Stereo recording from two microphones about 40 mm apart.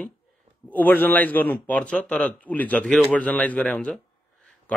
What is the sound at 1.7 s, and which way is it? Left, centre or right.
A man's voice, left.